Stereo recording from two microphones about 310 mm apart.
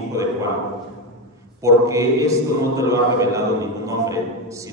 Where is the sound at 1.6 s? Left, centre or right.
Centre.